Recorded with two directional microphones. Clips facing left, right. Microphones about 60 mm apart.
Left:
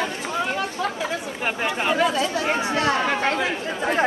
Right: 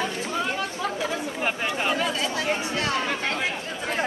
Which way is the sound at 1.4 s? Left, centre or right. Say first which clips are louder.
Left 3 dB; centre.